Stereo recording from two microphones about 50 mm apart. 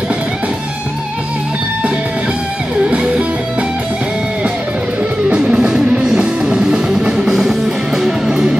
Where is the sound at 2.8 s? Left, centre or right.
Centre.